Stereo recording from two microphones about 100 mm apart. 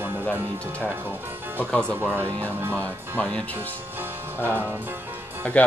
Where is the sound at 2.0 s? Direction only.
20° right (ahead or behind).